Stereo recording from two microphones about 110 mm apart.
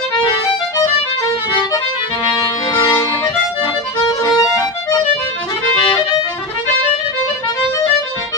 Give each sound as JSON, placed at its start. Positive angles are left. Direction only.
{"t": 2.3, "sound": "accordion", "side_deg": 30}
{"t": 4.2, "sound": "music", "side_deg": 30}